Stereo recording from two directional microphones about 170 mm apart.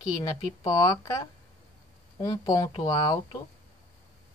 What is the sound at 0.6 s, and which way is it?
Speech, 20° left (ahead or behind).